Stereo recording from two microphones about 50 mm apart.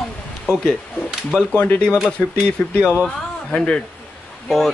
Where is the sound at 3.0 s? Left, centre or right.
Centre.